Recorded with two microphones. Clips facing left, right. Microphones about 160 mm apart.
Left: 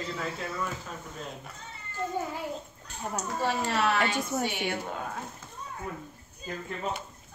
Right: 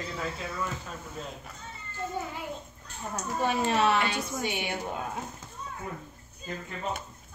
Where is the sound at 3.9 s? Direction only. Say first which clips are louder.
Left 1 dB; 45° left (ahead or behind).